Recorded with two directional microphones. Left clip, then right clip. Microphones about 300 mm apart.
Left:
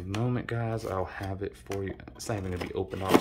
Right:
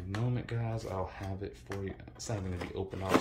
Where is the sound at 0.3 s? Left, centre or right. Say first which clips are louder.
Left 7 dB; centre.